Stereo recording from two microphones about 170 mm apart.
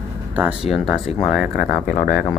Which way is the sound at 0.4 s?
5° right (ahead or behind).